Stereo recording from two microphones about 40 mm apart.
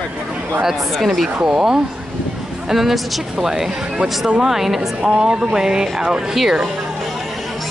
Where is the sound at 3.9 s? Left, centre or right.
Right.